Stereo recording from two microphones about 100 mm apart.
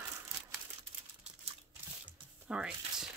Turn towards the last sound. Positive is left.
turn(degrees=-10)  # may be behind; listen again after turning